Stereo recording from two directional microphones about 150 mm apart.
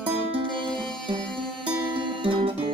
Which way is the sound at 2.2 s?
35° right (ahead or behind).